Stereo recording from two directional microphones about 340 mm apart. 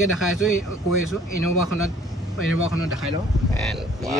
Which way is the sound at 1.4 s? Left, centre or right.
Left.